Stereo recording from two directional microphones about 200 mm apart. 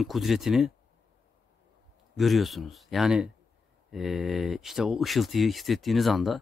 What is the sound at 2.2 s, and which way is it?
Speech, centre (ahead or behind).